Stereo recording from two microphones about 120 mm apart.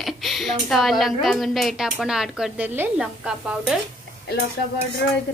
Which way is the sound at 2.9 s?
5° right (ahead or behind).